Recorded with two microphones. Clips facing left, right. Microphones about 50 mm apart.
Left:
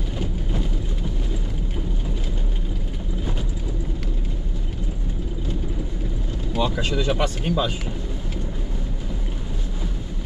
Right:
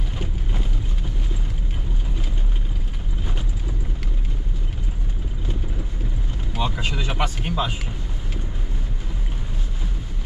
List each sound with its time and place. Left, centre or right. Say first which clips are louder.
6.5 s speech: left 3 dB; centre